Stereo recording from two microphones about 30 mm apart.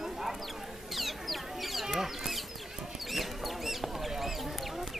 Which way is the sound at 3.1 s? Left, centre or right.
Centre.